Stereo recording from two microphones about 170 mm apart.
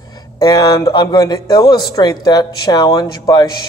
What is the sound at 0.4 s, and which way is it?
A man's voice, 25° left (ahead or behind).